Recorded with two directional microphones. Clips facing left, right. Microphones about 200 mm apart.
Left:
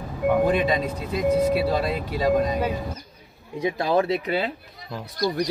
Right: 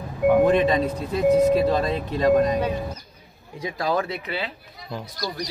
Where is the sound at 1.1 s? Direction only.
10° left (ahead or behind).